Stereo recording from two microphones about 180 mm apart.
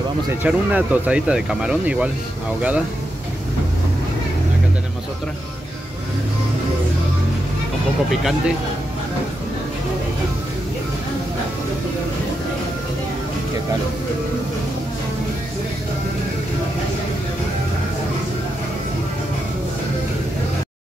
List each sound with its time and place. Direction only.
0.4 s speech: 10° right (ahead or behind)
8.1 s speech: centre (ahead or behind)